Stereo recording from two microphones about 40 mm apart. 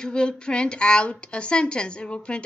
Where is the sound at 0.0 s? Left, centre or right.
Left.